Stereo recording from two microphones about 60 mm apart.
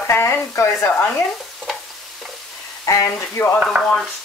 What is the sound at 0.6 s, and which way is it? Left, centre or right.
Frying, left.